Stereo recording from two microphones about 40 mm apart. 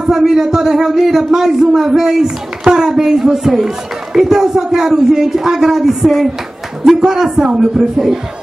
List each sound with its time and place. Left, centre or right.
0.2 s a man's voice: centre